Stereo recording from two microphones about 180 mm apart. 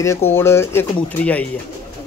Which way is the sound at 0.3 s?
15° left (ahead or behind).